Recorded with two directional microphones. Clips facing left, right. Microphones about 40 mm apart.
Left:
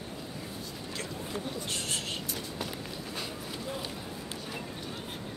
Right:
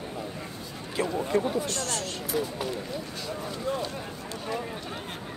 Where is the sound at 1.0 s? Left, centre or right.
Right.